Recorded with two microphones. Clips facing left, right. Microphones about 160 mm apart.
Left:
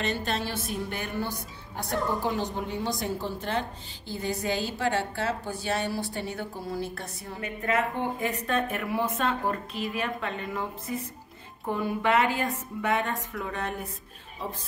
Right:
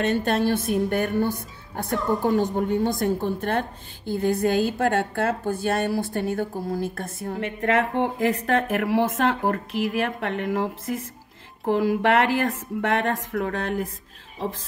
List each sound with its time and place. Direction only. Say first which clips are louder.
0.0 s a woman's voice: right 8 dB; 55° right (ahead or behind)
7.6 s speech: right 5 dB; 85° right